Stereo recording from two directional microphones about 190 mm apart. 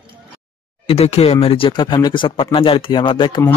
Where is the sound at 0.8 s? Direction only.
30° left (ahead or behind).